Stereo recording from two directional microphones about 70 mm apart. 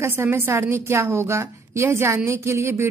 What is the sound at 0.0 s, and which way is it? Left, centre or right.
A woman's voice, right.